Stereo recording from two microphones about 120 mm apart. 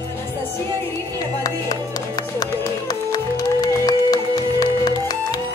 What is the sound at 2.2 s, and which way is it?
Music, 35° left (ahead or behind).